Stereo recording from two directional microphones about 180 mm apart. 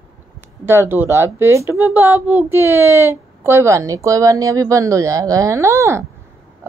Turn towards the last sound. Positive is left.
turn(degrees=-15)  # may be behind; listen again after turning